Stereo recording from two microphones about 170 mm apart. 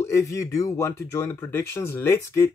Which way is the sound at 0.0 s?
15° left (ahead or behind).